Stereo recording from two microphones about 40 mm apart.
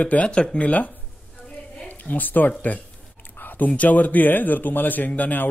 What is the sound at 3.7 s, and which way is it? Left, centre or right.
A man's voice, left.